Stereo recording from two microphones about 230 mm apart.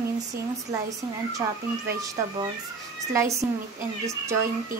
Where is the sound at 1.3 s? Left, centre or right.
Centre.